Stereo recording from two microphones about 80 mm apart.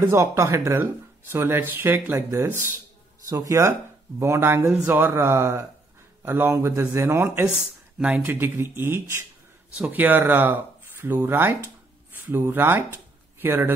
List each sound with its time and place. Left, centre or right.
0.0 s speech: right
4.8 s speech: right
5.1 s speech: right
6.5 s speech: right
9.8 s speech: right